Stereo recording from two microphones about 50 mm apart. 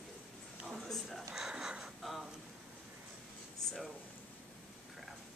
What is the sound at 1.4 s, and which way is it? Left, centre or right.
Wheeze, centre.